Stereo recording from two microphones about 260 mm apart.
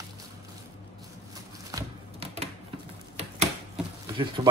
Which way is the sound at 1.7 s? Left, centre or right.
Centre.